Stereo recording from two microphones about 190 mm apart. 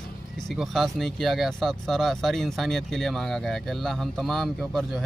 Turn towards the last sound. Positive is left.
turn(degrees=0)  # may be behind; listen again after turning